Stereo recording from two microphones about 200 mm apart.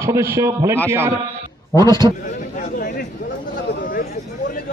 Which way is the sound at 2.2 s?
40° left (ahead or behind).